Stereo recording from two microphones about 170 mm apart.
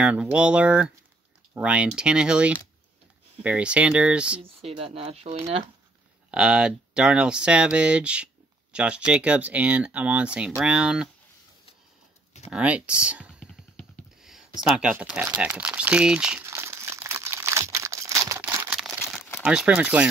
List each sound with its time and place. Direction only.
0.0 s speech: 5° right (ahead or behind)
4.4 s speech: 35° right (ahead or behind)
6.3 s speech: 5° right (ahead or behind)
12.4 s speech: 10° right (ahead or behind)
13.7 s a sound: centre (ahead or behind)
14.6 s speech: 5° right (ahead or behind)
16.4 s crumpling: 15° right (ahead or behind)
19.4 s speech: 5° right (ahead or behind)